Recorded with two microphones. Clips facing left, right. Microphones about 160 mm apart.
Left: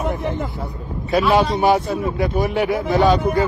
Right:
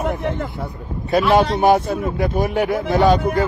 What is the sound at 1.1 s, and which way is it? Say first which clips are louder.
A man's voice: right 1 dB; 55° right (ahead or behind).